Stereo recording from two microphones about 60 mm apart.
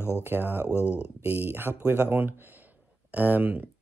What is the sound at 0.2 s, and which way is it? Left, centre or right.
Speech, right.